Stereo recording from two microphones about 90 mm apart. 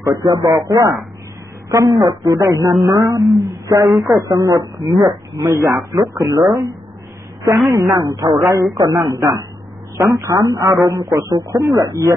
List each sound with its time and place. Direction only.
0.0 s a man's voice: 45° right (ahead or behind)
7.5 s a woman's voice: centre (ahead or behind)
7.8 s a man's voice: 40° right (ahead or behind)